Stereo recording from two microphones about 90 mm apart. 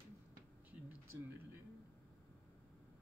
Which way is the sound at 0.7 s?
20° right (ahead or behind).